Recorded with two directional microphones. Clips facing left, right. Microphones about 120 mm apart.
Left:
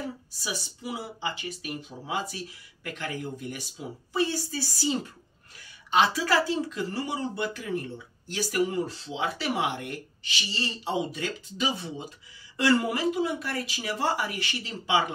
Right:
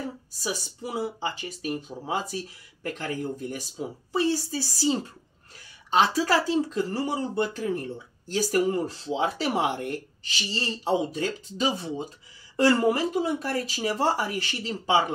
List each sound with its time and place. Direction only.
0.4 s speech: 40° right (ahead or behind)